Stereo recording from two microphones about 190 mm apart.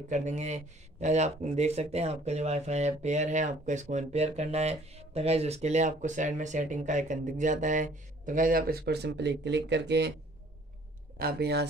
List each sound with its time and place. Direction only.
0.1 s speech: 35° right (ahead or behind); by 10.1 s 60° right (ahead or behind)
11.1 s speech: 55° right (ahead or behind)